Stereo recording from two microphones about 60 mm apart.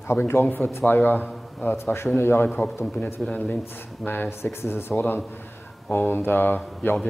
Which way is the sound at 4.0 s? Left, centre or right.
Left.